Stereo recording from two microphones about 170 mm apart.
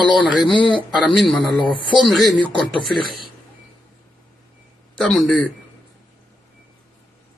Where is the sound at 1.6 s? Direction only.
30° left (ahead or behind).